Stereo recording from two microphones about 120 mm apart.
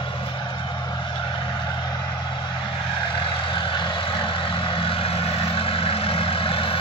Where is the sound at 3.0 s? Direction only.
45° left (ahead or behind).